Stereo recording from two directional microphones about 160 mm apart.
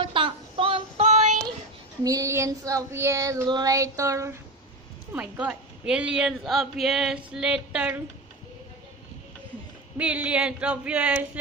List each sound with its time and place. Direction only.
0.0 s child singing: 30° right (ahead or behind)
2.0 s child singing: 20° right (ahead or behind)
5.1 s a woman's voice: 10° right (ahead or behind)
9.9 s a sound: 10° right (ahead or behind)